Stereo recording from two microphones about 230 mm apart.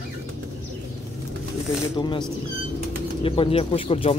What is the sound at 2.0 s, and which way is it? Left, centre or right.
Speech, centre.